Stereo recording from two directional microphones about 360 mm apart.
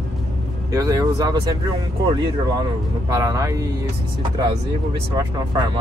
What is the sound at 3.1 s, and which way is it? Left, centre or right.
Speech, centre.